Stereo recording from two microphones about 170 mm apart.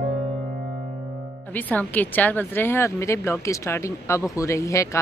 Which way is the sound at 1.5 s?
10° left (ahead or behind).